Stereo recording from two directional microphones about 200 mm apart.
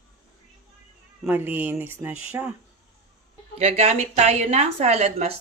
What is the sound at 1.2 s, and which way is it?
Speech, 10° right (ahead or behind).